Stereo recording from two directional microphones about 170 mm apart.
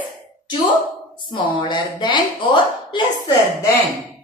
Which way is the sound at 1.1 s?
25° left (ahead or behind).